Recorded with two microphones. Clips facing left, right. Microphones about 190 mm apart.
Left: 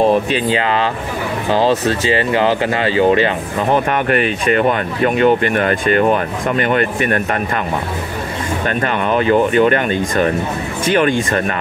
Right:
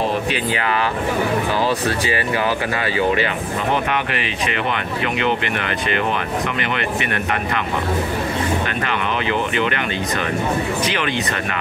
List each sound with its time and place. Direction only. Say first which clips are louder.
0.5 s speech: left 5 dB; 25° left (ahead or behind)
3.7 s speech: left 9 dB; 50° left (ahead or behind)
8.6 s speech: left 5 dB; 45° left (ahead or behind)